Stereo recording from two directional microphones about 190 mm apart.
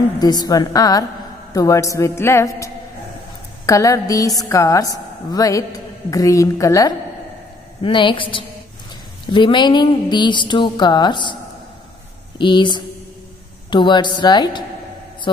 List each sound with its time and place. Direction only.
0.2 s a woman's voice: 20° left (ahead or behind)
12.4 s speech: 25° left (ahead or behind)